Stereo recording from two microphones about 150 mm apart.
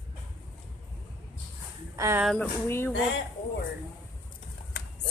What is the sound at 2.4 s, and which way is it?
Speech, 15° left (ahead or behind).